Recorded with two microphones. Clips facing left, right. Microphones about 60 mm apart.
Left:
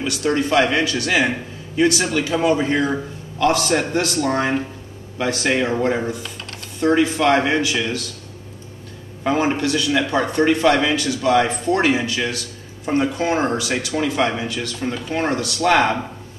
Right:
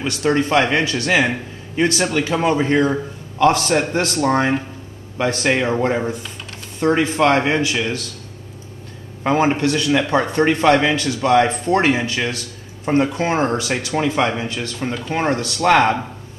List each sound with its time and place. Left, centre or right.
0.0 s a man's voice: right
5.5 s a man's voice: right
9.2 s a man's voice: right